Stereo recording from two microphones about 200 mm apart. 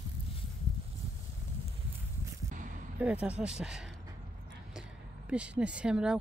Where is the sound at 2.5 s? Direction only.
40° right (ahead or behind).